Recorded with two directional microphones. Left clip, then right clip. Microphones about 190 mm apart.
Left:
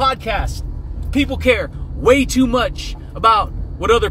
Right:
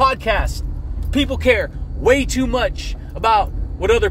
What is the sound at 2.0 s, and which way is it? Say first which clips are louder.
Speech: left 2 dB; 10° left (ahead or behind).